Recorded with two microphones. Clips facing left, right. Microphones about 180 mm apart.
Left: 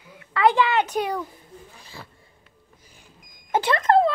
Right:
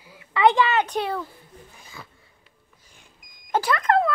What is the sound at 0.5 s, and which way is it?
Speech, 15° left (ahead or behind).